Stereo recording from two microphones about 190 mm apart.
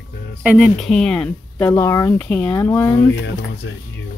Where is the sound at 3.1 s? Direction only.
65° left (ahead or behind).